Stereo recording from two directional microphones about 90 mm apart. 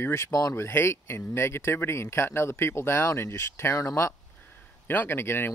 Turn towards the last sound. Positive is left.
turn(degrees=25)  # may be behind; listen again after turning